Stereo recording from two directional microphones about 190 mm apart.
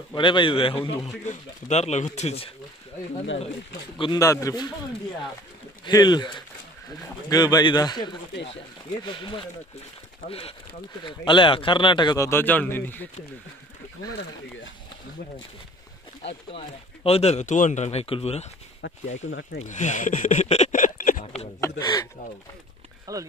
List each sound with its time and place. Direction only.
0.1 s a man's voice: 25° left (ahead or behind)
4.0 s a man's voice: 20° left (ahead or behind)
5.9 s a man's voice: 20° left (ahead or behind)
11.1 s a man's voice: 25° left (ahead or behind)
16.5 s speech: 30° left (ahead or behind)
18.8 s speech: 80° left
19.6 s speech: 40° left (ahead or behind)
21.5 s a man's voice: 15° left (ahead or behind)
23.1 s speech: 20° right (ahead or behind)